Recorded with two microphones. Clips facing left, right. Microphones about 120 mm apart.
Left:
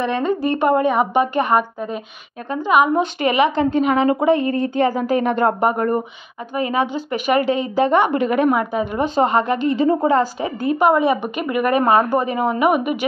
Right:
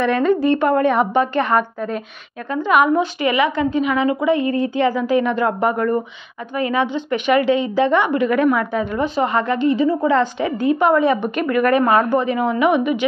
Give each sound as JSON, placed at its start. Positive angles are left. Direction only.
{"t": 0.0, "sound": "a woman's voice", "side_deg": 30}
{"t": 0.6, "sound": "a woman's voice", "side_deg": 15}
{"t": 3.2, "sound": "a woman's voice", "side_deg": 25}
{"t": 3.8, "sound": "a woman's voice", "side_deg": 40}
{"t": 8.2, "sound": "a woman's voice", "side_deg": 25}
{"t": 9.7, "sound": "speech", "side_deg": 45}
{"t": 10.8, "sound": "a woman's voice", "side_deg": 10}
{"t": 11.8, "sound": "a woman's voice", "side_deg": 25}
{"t": 12.1, "sound": "a woman's voice", "side_deg": 40}